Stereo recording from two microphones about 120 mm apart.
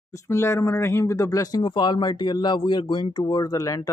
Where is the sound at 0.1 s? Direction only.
25° left (ahead or behind).